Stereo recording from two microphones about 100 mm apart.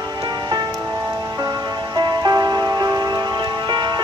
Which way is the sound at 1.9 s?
40° right (ahead or behind).